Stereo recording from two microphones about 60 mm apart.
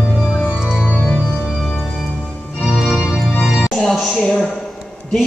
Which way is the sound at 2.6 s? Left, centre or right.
Centre.